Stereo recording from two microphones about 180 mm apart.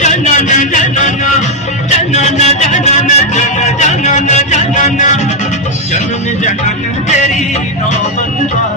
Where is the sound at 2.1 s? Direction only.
40° left (ahead or behind).